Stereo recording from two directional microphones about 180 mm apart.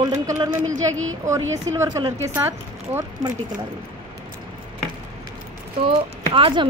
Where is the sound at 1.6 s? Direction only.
20° right (ahead or behind).